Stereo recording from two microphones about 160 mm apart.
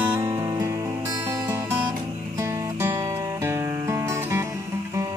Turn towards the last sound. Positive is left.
turn(degrees=-20)  # may be behind; listen again after turning